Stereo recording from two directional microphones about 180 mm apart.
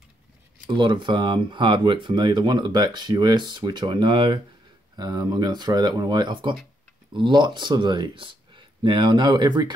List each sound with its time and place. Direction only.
0.7 s speech: 25° right (ahead or behind)